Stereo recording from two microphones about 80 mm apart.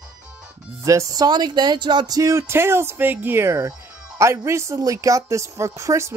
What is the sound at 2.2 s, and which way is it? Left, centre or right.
Speech, right.